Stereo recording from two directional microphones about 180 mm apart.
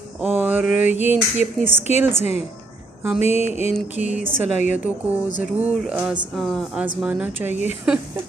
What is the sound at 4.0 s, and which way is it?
Speech, 45° left (ahead or behind).